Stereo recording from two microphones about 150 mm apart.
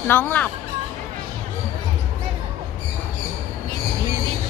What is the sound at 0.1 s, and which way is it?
Speech, 10° left (ahead or behind).